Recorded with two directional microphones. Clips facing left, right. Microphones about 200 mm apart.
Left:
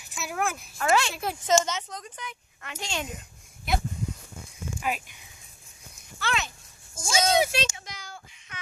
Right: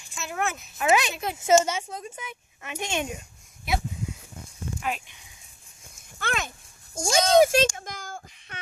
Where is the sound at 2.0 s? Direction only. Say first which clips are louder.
Right 3 dB; 25° right (ahead or behind).